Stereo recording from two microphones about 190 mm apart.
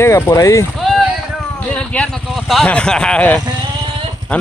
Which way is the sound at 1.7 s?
5° left (ahead or behind).